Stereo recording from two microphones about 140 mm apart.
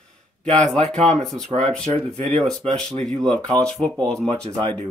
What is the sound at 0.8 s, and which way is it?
Speech, 55° right (ahead or behind).